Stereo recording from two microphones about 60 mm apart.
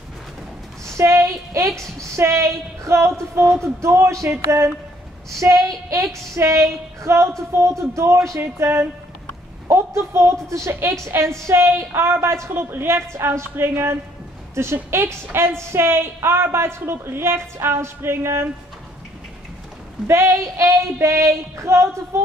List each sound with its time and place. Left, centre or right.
0.9 s a woman's voice: right
5.4 s a woman's voice: right
20.1 s a woman's voice: right